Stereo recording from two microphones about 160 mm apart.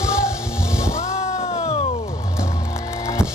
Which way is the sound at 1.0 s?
40° left (ahead or behind).